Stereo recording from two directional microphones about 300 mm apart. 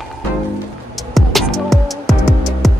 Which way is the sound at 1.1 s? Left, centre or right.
Centre.